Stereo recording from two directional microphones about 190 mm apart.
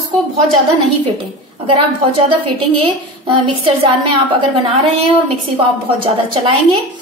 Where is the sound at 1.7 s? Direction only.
30° right (ahead or behind).